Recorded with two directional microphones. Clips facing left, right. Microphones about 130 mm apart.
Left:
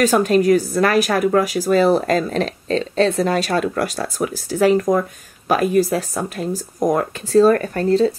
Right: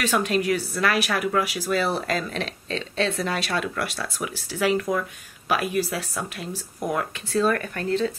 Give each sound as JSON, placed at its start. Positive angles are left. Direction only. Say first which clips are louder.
{"t": 0.0, "sound": "speech", "louder": "left 8 dB", "side_deg": 40}